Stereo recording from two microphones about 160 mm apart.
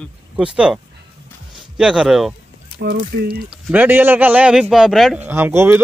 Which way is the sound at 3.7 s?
10° right (ahead or behind).